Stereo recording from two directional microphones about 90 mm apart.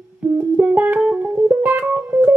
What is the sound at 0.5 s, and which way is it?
Music, 20° right (ahead or behind).